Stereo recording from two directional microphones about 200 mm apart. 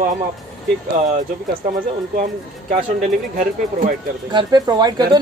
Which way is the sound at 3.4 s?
40° right (ahead or behind).